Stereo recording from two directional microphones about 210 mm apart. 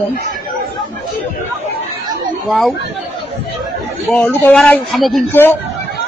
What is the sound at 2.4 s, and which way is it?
Speech, centre (ahead or behind).